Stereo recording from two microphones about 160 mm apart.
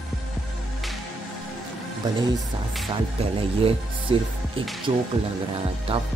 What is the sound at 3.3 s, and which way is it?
Music, 35° right (ahead or behind).